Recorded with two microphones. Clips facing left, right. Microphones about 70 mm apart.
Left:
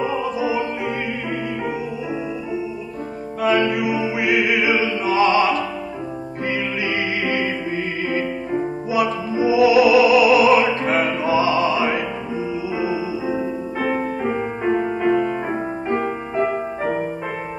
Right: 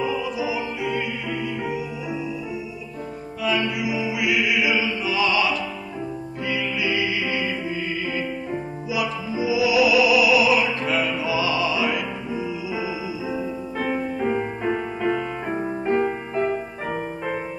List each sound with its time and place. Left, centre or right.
0.0 s music: left
3.4 s music: left
14.2 s music: centre